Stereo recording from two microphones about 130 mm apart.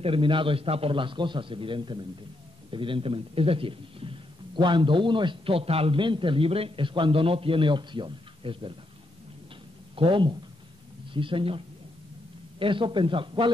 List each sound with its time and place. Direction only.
0.0 s a man's voice: 40° right (ahead or behind)
9.9 s a man's voice: 40° right (ahead or behind)